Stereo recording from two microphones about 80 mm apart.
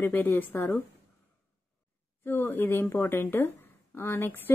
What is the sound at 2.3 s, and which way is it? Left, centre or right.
A woman's voice, left.